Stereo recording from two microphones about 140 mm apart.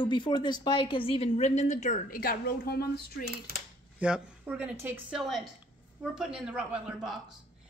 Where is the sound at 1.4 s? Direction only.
55° left (ahead or behind); by 3.0 s 90° left.